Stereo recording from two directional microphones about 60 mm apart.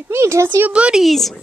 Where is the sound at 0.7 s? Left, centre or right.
Centre.